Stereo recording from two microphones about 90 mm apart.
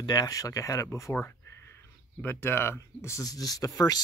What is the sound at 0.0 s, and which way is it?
Speech, 45° left (ahead or behind).